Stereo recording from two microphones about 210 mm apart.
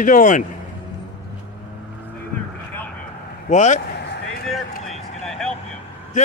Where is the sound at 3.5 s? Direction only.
35° left (ahead or behind).